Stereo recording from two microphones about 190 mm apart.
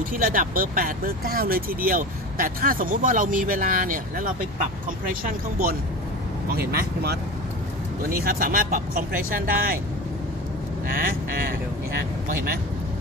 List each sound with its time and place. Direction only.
0.1 s speech: 45° right (ahead or behind)
10.9 s speech: 50° right (ahead or behind)